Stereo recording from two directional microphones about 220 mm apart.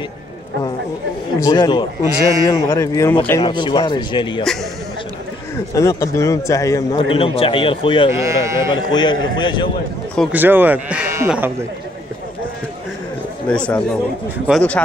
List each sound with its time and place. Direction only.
1.4 s a man's voice: 15° left (ahead or behind)
2.1 s speech: 15° right (ahead or behind)
2.4 s a man's voice: 15° left (ahead or behind)
5.8 s a man's voice: 15° left (ahead or behind)
8.1 s speech: 15° right (ahead or behind)
8.9 s a man's voice: 20° left (ahead or behind)
10.3 s speech: 10° right (ahead or behind)
13.5 s speech: 5° left (ahead or behind)